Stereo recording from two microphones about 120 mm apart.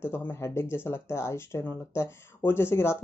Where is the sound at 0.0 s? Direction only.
20° left (ahead or behind).